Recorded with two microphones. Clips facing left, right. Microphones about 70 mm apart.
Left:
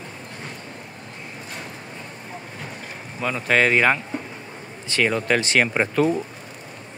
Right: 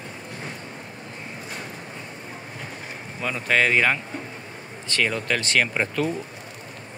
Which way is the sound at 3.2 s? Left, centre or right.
Centre.